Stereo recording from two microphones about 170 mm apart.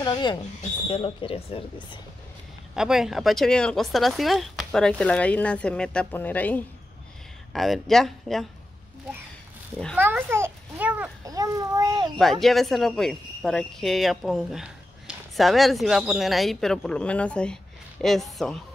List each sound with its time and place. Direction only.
0.0 s speech: 25° left (ahead or behind)
2.7 s speech: 5° right (ahead or behind)
9.9 s a child's voice: 15° right (ahead or behind)
11.2 s a child's voice: 20° right (ahead or behind)
12.2 s speech: centre (ahead or behind)